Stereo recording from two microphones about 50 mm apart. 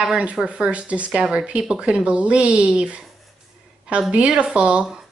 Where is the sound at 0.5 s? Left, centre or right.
Right.